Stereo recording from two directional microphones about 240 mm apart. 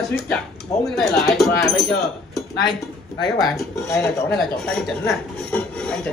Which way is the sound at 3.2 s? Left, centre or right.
Centre.